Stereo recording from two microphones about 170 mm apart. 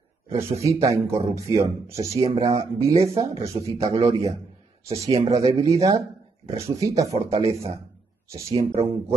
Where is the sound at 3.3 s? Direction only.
35° right (ahead or behind).